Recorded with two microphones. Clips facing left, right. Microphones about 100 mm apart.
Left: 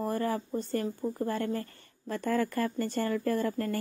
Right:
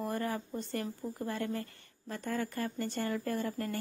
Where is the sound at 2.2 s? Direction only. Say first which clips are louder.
Left 6 dB; 55° left (ahead or behind).